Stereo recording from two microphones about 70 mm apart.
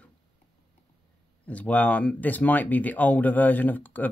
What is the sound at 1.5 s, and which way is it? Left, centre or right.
Speech, left.